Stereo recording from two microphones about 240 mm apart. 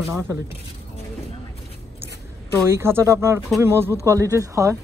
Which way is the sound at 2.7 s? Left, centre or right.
Centre.